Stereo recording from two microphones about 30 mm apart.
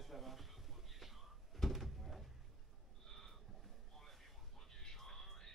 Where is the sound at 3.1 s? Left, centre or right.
Centre.